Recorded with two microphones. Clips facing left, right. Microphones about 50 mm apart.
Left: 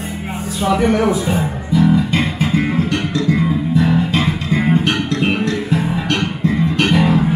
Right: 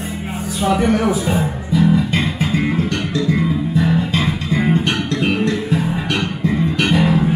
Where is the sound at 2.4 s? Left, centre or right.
Centre.